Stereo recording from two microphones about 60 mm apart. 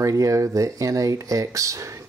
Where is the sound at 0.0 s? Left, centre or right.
Right.